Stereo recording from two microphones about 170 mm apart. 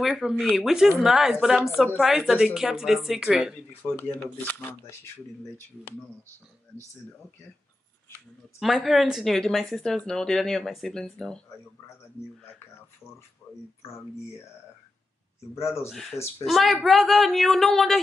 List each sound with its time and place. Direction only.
0.0 s speech: centre (ahead or behind)
3.8 s speech: 10° left (ahead or behind)
8.5 s speech: centre (ahead or behind)
15.5 s speech: 15° left (ahead or behind)
15.9 s speech: centre (ahead or behind)